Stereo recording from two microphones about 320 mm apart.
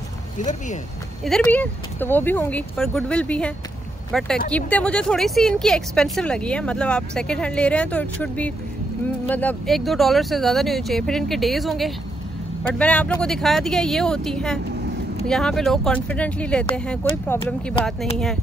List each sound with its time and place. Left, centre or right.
0.4 s speech: left
1.2 s speech: centre
17.0 s speech: centre
17.5 s speech: centre